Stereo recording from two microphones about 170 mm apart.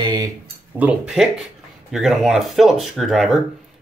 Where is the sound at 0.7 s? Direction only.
5° right (ahead or behind).